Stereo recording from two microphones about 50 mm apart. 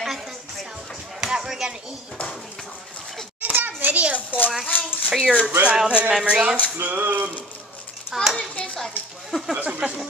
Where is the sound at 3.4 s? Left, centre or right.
Right.